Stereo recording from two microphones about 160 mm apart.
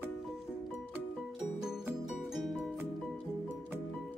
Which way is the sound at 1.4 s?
5° right (ahead or behind).